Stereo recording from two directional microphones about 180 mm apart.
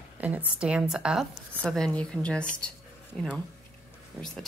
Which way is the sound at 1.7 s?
5° left (ahead or behind).